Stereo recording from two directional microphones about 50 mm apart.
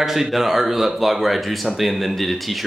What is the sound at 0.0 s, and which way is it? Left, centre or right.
Speech, centre.